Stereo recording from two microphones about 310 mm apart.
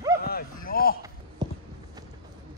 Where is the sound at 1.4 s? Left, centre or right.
Centre.